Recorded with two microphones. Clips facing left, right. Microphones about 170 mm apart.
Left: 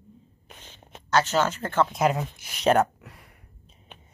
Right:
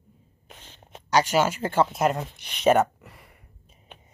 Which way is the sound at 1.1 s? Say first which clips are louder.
Right 1 dB; 10° right (ahead or behind).